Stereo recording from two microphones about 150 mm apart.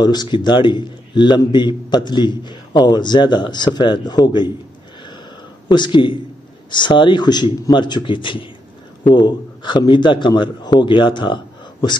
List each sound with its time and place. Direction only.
0.0 s a man's voice: 30° left (ahead or behind)
5.7 s a man's voice: 30° left (ahead or behind)